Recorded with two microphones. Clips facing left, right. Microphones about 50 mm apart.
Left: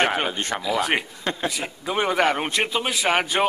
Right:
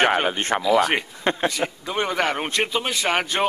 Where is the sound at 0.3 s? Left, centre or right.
Right.